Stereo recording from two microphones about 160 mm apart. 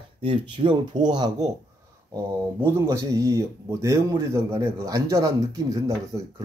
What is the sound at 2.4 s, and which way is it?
Speech, 15° right (ahead or behind).